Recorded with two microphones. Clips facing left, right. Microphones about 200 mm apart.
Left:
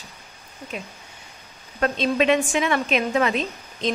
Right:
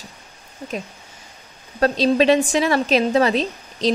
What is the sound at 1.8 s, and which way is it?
A woman's voice, 35° right (ahead or behind).